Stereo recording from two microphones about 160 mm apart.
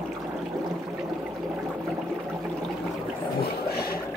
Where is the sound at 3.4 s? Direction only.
75° left (ahead or behind).